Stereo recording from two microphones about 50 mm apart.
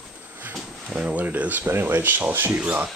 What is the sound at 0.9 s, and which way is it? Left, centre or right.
Speech, right.